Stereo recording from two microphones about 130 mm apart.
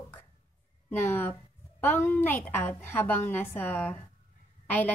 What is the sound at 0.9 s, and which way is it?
A woman's voice, 15° left (ahead or behind).